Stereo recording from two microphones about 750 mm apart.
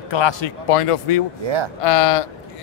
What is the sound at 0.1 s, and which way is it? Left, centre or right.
A man's voice, left.